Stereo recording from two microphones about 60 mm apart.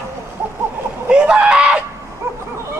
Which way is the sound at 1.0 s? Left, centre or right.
Centre.